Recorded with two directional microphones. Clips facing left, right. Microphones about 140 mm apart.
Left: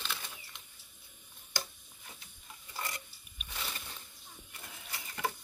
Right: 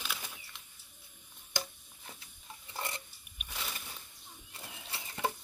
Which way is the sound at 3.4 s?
5° right (ahead or behind).